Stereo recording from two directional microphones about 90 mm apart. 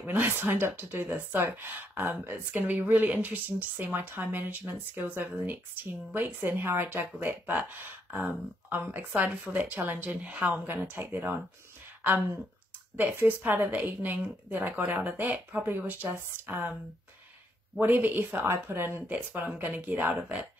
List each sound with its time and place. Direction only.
0.0 s speech: 20° right (ahead or behind)
12.9 s speech: 20° right (ahead or behind)
17.7 s speech: 20° right (ahead or behind)